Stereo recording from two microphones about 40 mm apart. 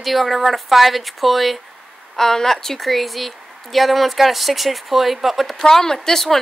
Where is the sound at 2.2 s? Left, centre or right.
Centre.